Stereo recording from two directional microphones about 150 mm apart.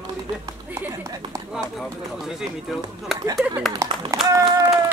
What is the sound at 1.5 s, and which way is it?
Speech, 5° right (ahead or behind).